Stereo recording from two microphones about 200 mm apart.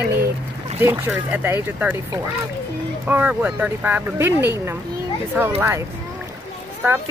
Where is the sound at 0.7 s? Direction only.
10° right (ahead or behind).